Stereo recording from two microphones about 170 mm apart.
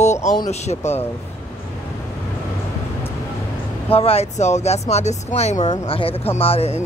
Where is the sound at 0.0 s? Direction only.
45° left (ahead or behind).